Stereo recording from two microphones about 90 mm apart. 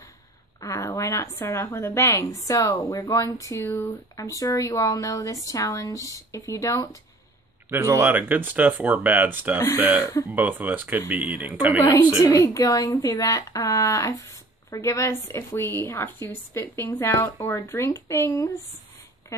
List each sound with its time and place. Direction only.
0.6 s speech: 35° left (ahead or behind)
7.7 s speech: 30° right (ahead or behind)
11.8 s a woman's voice: 45° left (ahead or behind); by 18.5 s 30° left (ahead or behind)